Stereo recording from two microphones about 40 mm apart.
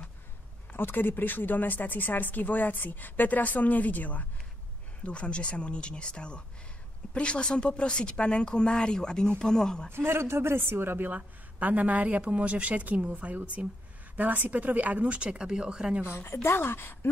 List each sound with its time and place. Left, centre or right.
0.7 s speech: left
5.0 s speech: left
9.9 s speech: right
11.1 s speech: right
13.2 s speech: right
14.1 s speech: right
16.4 s speech: left